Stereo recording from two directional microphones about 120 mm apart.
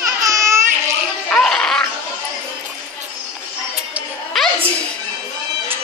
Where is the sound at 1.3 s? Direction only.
5° left (ahead or behind).